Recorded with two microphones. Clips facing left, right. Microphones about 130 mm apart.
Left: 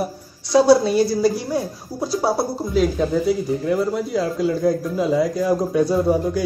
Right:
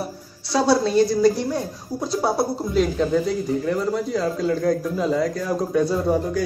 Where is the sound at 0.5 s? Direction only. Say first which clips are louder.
Left 5 dB; 15° left (ahead or behind).